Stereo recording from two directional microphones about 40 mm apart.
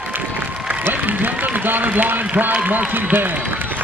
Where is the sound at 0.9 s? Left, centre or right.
Right.